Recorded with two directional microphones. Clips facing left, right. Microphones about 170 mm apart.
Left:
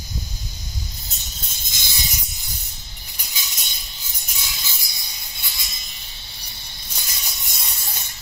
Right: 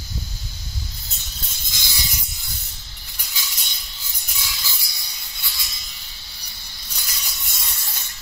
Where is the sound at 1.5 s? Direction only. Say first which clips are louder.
Right 1 dB; 20° left (ahead or behind).